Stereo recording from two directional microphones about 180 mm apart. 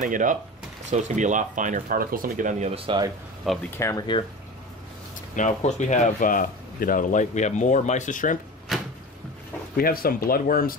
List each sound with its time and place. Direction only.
0.0 s speech: 45° right (ahead or behind); by 3.1 s 30° right (ahead or behind)
3.7 s speech: 20° left (ahead or behind)
5.3 s speech: 45° left (ahead or behind)
8.7 s a sound: centre (ahead or behind)
9.8 s speech: 55° left (ahead or behind)